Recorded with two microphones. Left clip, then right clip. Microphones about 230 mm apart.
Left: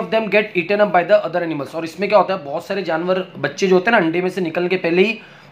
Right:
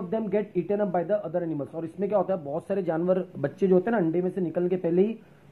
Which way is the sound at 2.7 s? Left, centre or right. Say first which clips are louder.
Left 6 dB; centre.